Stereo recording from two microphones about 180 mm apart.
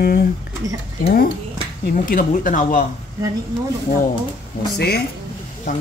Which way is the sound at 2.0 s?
50° left (ahead or behind).